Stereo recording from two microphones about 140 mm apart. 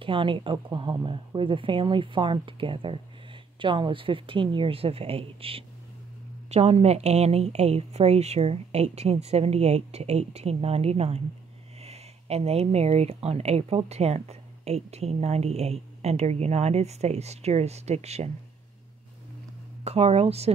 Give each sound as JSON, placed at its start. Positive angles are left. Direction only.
{"t": 0.0, "sound": "speech", "side_deg": -35}
{"t": 19.8, "sound": "speech", "side_deg": -50}